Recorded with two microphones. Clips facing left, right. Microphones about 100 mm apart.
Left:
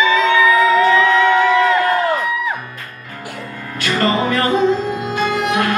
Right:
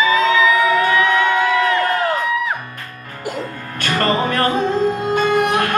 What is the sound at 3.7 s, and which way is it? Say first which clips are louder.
Music: left 1 dB; 45° right (ahead or behind).